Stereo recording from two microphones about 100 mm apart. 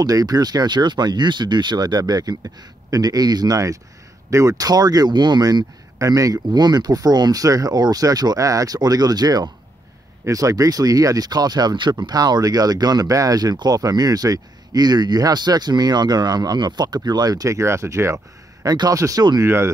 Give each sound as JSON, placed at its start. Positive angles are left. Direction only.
{"t": 0.0, "sound": "speech", "side_deg": -40}